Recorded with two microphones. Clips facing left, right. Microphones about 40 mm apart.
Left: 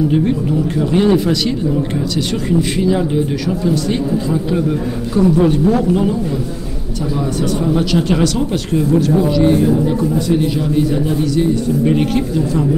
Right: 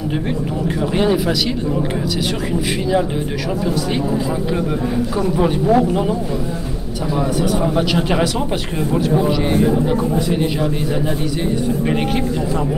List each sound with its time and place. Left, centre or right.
0.7 s speech: centre
2.8 s speech: centre
7.6 s speech: centre